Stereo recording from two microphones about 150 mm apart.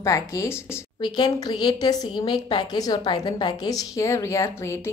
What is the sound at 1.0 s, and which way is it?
A woman's voice, 30° left (ahead or behind).